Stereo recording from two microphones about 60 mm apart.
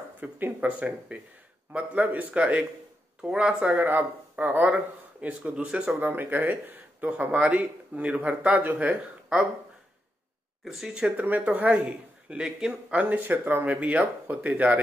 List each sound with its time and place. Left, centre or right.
0.2 s speech: right
3.7 s speech: right
5.9 s speech: right
10.6 s speech: centre
11.1 s speech: right
11.8 s a man's voice: centre
13.1 s speech: right